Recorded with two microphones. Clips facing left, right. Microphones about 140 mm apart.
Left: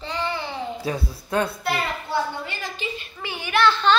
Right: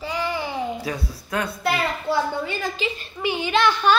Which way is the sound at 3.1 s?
20° right (ahead or behind).